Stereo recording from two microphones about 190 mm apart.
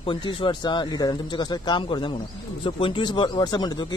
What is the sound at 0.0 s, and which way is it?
Speech, 25° left (ahead or behind).